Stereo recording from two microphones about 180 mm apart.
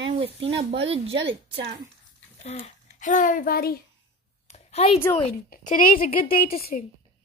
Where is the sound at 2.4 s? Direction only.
40° left (ahead or behind).